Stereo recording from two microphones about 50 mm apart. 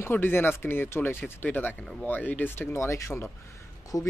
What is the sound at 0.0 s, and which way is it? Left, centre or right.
Speech, left.